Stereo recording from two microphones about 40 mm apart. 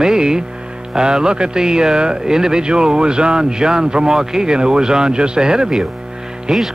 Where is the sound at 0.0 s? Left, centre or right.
Centre.